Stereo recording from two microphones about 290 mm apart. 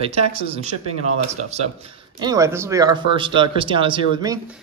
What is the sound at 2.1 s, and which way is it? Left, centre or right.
Speech, centre.